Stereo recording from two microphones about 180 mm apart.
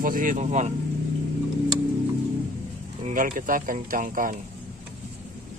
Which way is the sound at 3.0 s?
45° right (ahead or behind).